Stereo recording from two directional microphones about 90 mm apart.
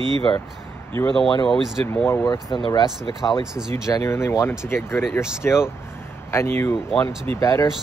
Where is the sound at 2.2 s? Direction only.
55° left (ahead or behind).